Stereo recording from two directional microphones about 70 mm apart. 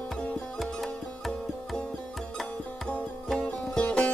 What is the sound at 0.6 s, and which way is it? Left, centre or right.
Music, centre.